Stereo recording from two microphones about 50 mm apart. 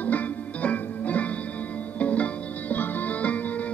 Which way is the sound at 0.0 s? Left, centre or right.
Left.